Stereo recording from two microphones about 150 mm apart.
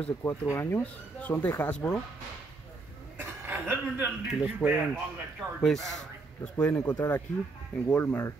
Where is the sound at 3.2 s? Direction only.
15° right (ahead or behind).